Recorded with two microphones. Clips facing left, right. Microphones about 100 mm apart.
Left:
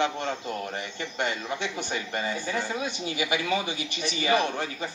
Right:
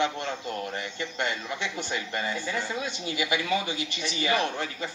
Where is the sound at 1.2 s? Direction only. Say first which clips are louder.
Left 2 dB; 20° left (ahead or behind).